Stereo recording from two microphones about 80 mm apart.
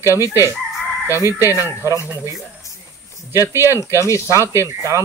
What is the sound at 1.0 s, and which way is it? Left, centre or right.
Speech, left.